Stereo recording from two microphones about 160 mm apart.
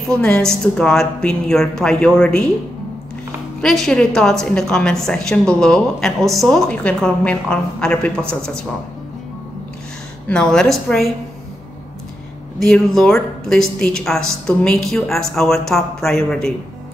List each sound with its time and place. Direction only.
0.1 s a woman's voice: 5° left (ahead or behind)
3.6 s a woman's voice: centre (ahead or behind)
10.2 s a woman's voice: 5° left (ahead or behind)
12.5 s a woman's voice: centre (ahead or behind)